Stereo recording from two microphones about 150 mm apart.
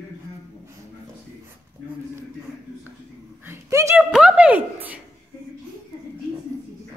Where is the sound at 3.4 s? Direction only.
20° right (ahead or behind).